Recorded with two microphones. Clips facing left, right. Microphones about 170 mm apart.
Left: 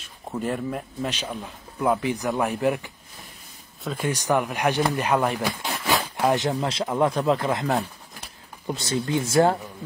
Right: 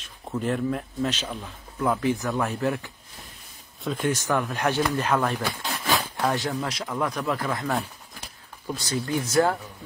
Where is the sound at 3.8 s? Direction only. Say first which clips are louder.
Right 1 dB; centre (ahead or behind).